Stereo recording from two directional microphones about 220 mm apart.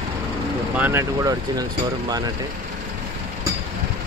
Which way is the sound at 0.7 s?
10° right (ahead or behind).